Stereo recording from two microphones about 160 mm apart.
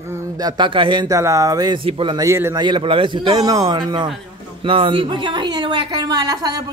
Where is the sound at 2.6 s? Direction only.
30° right (ahead or behind).